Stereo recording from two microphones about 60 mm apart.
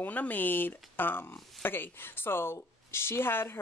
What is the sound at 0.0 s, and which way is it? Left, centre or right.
Speech, left.